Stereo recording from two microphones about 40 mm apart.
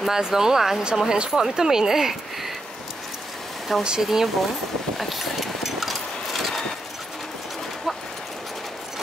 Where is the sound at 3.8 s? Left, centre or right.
Centre.